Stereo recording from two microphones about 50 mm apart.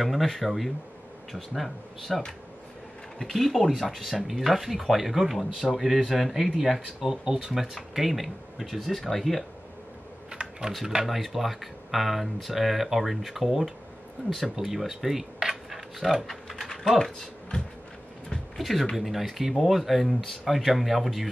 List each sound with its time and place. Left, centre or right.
0.0 s speech: centre
7.7 s speech: centre
10.3 s computer keyboard: centre
11.1 s speech: centre
15.4 s a sound: centre
16.3 s typing: centre
16.9 s speech: centre
17.5 s a sound: centre
18.3 s a sound: centre
18.9 s speech: centre